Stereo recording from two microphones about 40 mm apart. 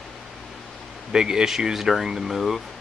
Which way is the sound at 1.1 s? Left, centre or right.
Centre.